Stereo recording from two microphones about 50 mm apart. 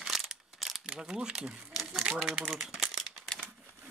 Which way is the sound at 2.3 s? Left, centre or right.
Centre.